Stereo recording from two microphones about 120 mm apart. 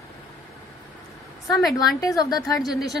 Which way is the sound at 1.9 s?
30° left (ahead or behind).